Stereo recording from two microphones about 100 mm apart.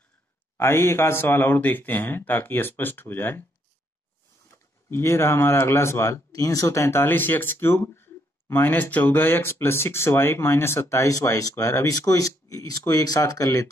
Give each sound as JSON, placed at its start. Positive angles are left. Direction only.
{"t": 0.6, "sound": "speech", "side_deg": 25}
{"t": 4.5, "sound": "speech", "side_deg": 25}